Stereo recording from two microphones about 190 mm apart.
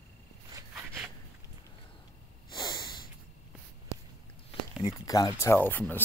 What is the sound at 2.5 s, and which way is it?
Snort, 20° left (ahead or behind).